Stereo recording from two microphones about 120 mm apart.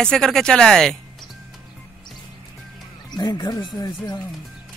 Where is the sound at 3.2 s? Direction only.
35° left (ahead or behind).